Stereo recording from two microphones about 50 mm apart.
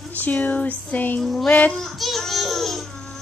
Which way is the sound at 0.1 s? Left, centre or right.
Left.